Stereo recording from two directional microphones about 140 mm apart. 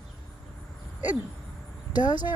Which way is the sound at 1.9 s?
30° left (ahead or behind).